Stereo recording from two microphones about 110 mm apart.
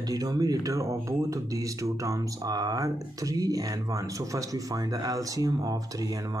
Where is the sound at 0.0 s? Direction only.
35° right (ahead or behind).